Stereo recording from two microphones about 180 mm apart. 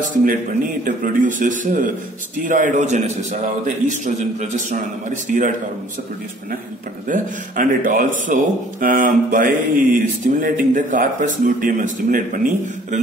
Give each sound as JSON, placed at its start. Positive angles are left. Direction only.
{"t": 0.0, "sound": "speech", "side_deg": -50}
{"t": 7.1, "sound": "speech", "side_deg": -50}